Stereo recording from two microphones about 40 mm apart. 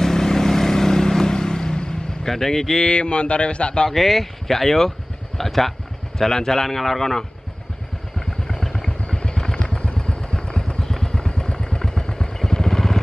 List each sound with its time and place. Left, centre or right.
0.0 s vehicle: centre
2.9 s speech: left
3.9 s a man's voice: centre
8.5 s vehicle: centre